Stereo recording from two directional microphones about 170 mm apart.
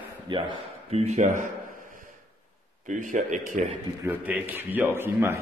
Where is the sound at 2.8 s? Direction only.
45° right (ahead or behind).